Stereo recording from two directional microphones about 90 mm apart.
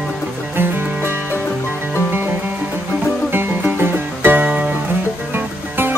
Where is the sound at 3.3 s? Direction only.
25° right (ahead or behind).